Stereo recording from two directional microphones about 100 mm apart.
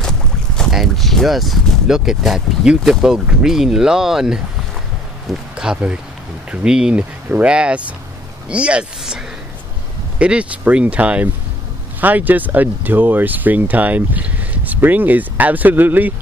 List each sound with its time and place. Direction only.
0.6 s speech: centre (ahead or behind); by 16.1 s 20° right (ahead or behind)